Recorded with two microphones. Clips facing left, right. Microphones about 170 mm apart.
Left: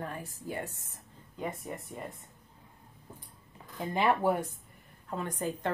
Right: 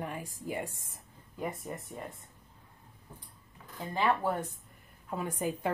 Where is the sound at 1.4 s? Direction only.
Centre (ahead or behind).